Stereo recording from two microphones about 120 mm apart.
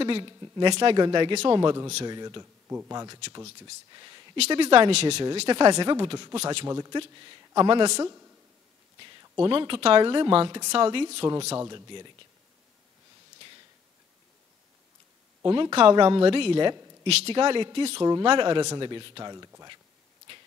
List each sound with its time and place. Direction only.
0.0 s a man's voice: 45° right (ahead or behind)
4.5 s speech: 45° right (ahead or behind)
5.5 s a man's voice: 40° right (ahead or behind)
6.7 s a man's voice: 30° right (ahead or behind)
7.0 s a man's voice: 40° right (ahead or behind)
8.0 s a man's voice: 25° right (ahead or behind)
9.4 s speech: 45° right (ahead or behind)
11.5 s a man's voice: 35° right (ahead or behind)
15.5 s a man's voice: 45° right (ahead or behind); by 19.7 s 30° right (ahead or behind)